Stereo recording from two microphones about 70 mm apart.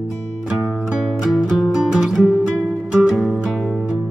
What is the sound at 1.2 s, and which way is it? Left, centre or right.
Music, centre.